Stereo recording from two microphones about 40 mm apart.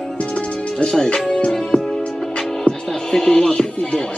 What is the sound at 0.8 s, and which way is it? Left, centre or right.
Speech, centre.